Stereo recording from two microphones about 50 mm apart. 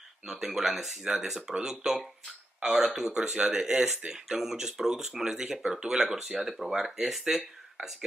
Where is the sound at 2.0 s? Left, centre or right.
Centre.